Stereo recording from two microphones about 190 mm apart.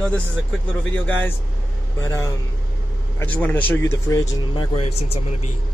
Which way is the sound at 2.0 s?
15° left (ahead or behind).